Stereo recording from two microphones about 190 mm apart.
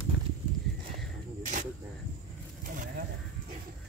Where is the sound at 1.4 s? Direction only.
40° right (ahead or behind).